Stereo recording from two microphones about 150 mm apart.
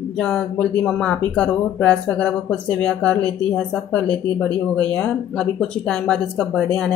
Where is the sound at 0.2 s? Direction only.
5° left (ahead or behind).